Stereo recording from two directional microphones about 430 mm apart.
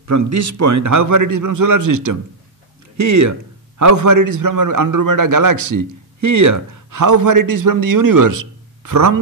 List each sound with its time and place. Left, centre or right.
0.0 s a man's voice: right